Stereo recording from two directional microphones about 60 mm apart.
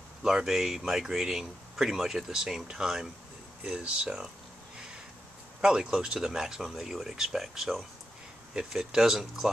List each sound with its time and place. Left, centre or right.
0.2 s speech: centre
5.6 s speech: centre